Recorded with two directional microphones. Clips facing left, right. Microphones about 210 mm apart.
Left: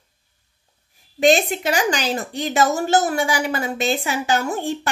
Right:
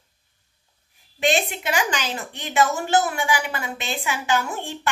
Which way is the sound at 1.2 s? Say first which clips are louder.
Left 6 dB; 40° left (ahead or behind).